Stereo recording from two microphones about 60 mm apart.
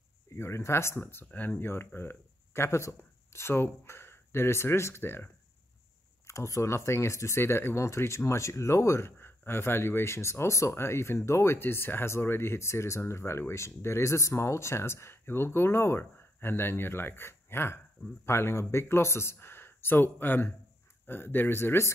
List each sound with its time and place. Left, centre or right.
0.4 s speech: left
0.9 s speech: left
6.2 s speech: left